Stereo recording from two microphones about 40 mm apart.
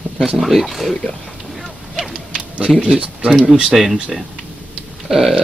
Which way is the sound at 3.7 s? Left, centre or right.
Centre.